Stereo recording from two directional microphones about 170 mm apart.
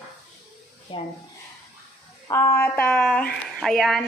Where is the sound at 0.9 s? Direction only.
30° left (ahead or behind).